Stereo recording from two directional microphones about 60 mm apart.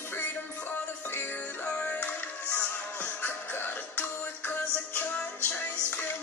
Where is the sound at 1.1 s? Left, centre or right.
Left.